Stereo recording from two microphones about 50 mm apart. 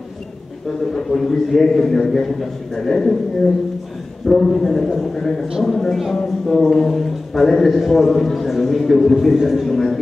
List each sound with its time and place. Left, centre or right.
0.7 s a man's voice: centre
4.3 s a man's voice: centre